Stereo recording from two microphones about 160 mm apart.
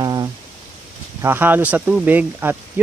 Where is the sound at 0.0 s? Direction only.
25° right (ahead or behind).